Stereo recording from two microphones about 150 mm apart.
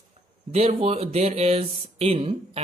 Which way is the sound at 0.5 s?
40° right (ahead or behind).